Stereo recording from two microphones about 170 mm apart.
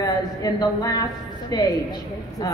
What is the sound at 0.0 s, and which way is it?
Speech, 20° left (ahead or behind).